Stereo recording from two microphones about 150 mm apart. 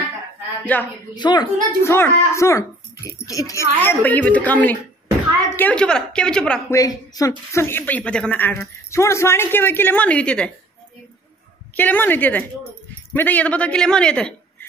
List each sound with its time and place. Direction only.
0.7 s speech: 10° left (ahead or behind)
1.1 s a woman's voice: 30° left (ahead or behind)
1.8 s speech: 15° left (ahead or behind)
6.7 s speech: 20° left (ahead or behind)
11.7 s a man's voice: 10° left (ahead or behind)